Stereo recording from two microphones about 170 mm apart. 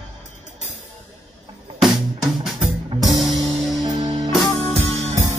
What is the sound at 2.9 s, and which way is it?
Music, centre (ahead or behind).